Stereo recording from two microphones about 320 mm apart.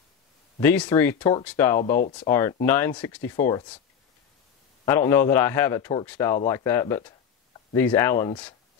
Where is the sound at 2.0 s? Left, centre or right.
Left.